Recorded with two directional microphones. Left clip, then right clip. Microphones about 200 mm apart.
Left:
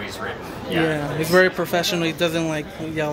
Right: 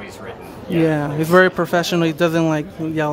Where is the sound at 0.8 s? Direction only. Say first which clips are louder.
Right 4 dB; 45° right (ahead or behind).